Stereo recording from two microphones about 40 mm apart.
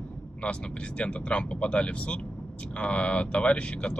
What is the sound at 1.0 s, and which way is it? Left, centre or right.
Speech, left.